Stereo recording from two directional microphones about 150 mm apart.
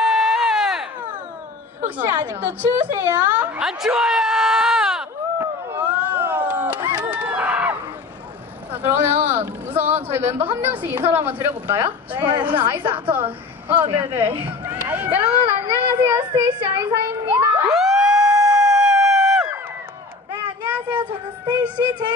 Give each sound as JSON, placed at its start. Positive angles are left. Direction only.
{"t": 0.0, "sound": "baby cry", "side_deg": 0}
{"t": 2.0, "sound": "a woman's voice", "side_deg": -10}
{"t": 5.4, "sound": "a sound", "side_deg": -15}
{"t": 8.8, "sound": "a woman's voice", "side_deg": -15}
{"t": 13.9, "sound": "a sound", "side_deg": -15}
{"t": 16.3, "sound": "speech", "side_deg": -15}
{"t": 17.2, "sound": "crowd", "side_deg": -15}
{"t": 17.7, "sound": "emergency vehicle", "side_deg": -5}
{"t": 18.3, "sound": "howl", "side_deg": -25}
{"t": 18.6, "sound": "a sound", "side_deg": -5}
{"t": 20.6, "sound": "a sound", "side_deg": -10}
{"t": 21.5, "sound": "child singing", "side_deg": -10}